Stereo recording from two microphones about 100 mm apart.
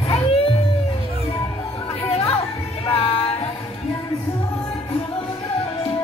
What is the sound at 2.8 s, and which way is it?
Music, 75° left (ahead or behind).